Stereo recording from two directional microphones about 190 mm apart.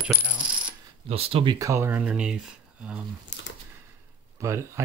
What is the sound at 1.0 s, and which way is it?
Speech, 30° right (ahead or behind).